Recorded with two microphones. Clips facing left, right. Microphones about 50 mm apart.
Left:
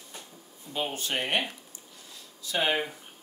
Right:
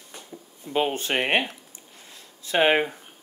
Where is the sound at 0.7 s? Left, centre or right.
Right.